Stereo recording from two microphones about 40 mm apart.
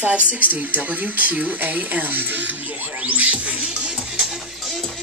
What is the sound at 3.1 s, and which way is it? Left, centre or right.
Music, right.